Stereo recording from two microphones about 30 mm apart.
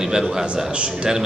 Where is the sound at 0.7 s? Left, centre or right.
Right.